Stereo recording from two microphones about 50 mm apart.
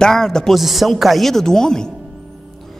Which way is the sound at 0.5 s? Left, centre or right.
Centre.